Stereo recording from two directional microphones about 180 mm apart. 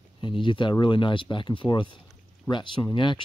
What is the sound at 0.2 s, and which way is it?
Speech, 25° left (ahead or behind).